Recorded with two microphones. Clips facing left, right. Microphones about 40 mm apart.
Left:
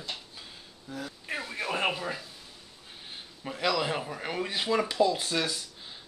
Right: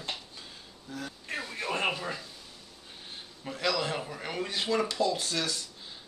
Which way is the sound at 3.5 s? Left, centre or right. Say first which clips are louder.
Left 2 dB; centre.